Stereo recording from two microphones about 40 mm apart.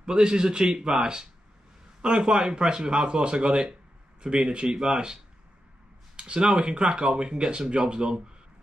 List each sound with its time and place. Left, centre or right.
0.0 s speech: right